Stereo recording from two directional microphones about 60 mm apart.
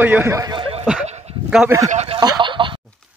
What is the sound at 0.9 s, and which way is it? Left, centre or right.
Speech, centre.